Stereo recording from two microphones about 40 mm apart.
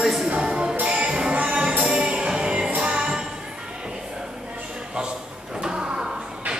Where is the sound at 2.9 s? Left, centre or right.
Centre.